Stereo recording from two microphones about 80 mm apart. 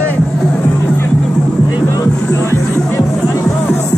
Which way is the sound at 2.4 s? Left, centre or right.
Left.